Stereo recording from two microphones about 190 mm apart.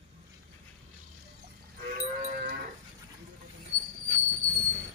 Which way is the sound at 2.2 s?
50° right (ahead or behind).